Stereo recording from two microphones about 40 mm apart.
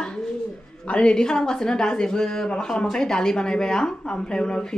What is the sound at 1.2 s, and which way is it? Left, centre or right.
Speech, centre.